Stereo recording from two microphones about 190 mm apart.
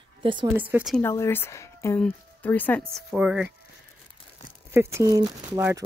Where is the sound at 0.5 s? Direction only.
10° right (ahead or behind).